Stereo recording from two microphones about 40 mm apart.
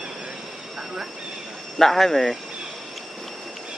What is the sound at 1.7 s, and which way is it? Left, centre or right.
Speech, centre.